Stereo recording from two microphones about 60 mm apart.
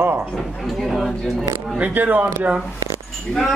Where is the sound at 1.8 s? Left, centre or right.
Right.